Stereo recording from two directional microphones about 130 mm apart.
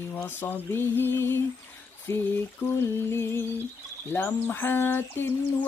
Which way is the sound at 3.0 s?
20° left (ahead or behind).